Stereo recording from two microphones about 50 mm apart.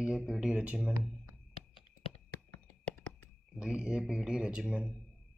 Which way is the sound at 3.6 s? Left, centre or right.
Centre.